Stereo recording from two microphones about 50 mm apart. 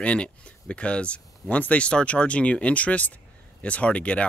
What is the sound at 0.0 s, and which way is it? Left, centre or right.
Speech, left.